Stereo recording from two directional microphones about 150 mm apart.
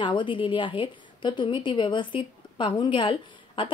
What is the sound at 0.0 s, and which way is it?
A woman's voice, 30° left (ahead or behind).